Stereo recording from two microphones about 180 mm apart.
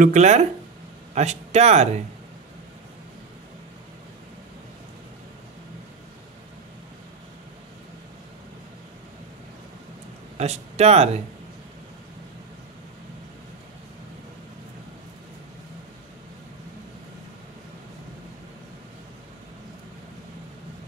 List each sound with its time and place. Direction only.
0.0 s speech: 40° right (ahead or behind)
10.3 s speech: 35° right (ahead or behind)